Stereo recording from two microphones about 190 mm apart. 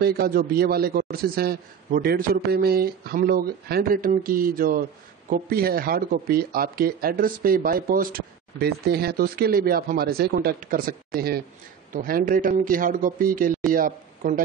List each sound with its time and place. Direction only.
0.0 s speech: 55° right (ahead or behind)